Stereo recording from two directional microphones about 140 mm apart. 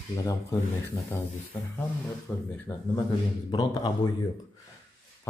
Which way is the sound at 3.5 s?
35° left (ahead or behind).